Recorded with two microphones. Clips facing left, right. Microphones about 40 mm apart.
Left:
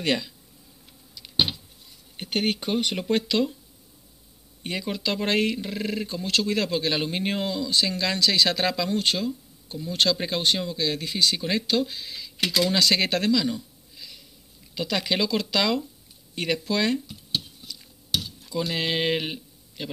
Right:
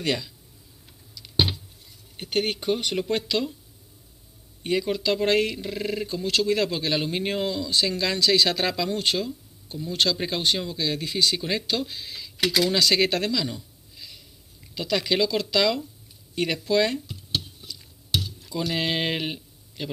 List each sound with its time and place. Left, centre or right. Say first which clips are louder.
0.0 s speech: left 1 dB; left
2.1 s speech: even; centre
4.6 s speech: right 4 dB; centre
5.7 s speech: right 1 dB; centre
9.0 s speech: even; centre
9.8 s speech: left 1 dB; centre
12.6 s speech: even; centre
13.3 s a sound: left 4 dB; centre
14.7 s speech: right 1 dB; centre
16.3 s speech: right 3 dB; centre
17.1 s a sound: even; right
18.7 s speech: even; centre